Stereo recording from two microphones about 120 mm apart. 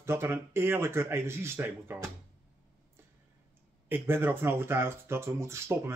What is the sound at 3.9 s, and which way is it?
A man's voice, 15° right (ahead or behind).